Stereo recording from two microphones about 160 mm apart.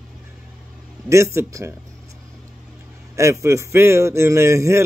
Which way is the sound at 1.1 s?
15° right (ahead or behind).